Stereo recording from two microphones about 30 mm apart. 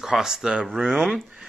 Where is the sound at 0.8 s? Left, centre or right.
Right.